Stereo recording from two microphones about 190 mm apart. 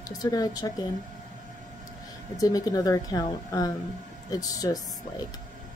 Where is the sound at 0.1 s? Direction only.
20° left (ahead or behind).